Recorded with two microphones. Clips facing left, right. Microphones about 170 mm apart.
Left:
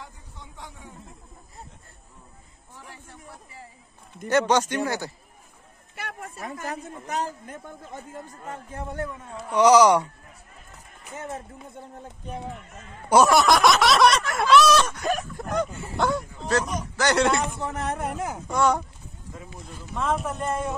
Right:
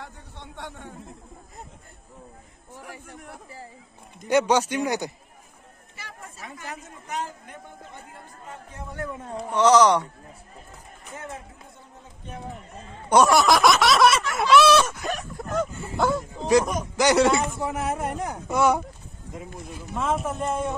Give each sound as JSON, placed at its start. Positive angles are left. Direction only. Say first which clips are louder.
{"t": 0.0, "sound": "a sound", "louder": "right 3 dB", "side_deg": -70}
{"t": 4.3, "sound": "speech", "louder": "right 1 dB", "side_deg": -10}
{"t": 5.9, "sound": "a man's voice", "louder": "left 6 dB", "side_deg": 60}
{"t": 9.2, "sound": "a man's voice", "louder": "right 5 dB", "side_deg": -40}
{"t": 9.5, "sound": "speech", "louder": "left 1 dB", "side_deg": 10}
{"t": 12.5, "sound": "a man's voice", "louder": "right 2 dB", "side_deg": -35}
{"t": 13.1, "sound": "a man's voice", "louder": "even", "side_deg": 0}
{"t": 16.4, "sound": "a man's voice", "louder": "right 6 dB", "side_deg": -15}
{"t": 19.9, "sound": "a man's voice", "louder": "even", "side_deg": 0}